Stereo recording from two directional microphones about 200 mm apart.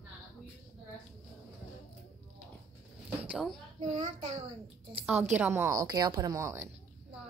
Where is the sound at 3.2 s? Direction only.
5° right (ahead or behind).